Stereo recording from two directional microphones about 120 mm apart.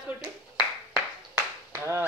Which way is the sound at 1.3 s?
20° right (ahead or behind).